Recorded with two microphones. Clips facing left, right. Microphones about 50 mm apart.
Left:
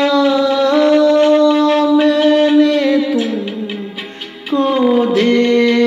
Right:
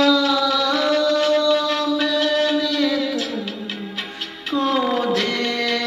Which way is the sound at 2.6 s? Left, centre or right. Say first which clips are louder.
Left 9 dB; left.